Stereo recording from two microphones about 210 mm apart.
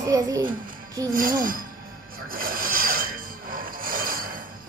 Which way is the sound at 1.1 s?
40° right (ahead or behind).